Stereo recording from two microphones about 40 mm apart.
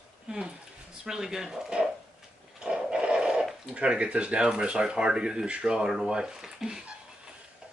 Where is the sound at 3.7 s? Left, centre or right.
Right.